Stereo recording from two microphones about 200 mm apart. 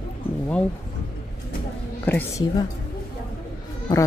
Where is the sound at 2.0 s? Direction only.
10° left (ahead or behind).